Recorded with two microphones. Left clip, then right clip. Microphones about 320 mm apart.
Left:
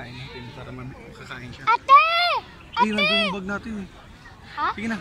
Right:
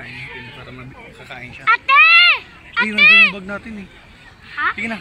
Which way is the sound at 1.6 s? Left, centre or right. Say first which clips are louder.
Right 4 dB; centre.